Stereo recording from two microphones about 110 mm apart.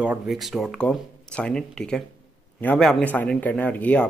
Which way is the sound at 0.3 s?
Centre (ahead or behind).